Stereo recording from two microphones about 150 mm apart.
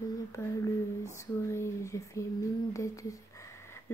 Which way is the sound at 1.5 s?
20° left (ahead or behind).